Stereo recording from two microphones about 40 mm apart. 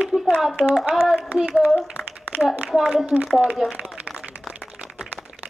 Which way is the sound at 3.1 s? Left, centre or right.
Centre.